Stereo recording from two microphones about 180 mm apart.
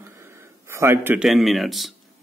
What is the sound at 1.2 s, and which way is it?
Speech, centre (ahead or behind).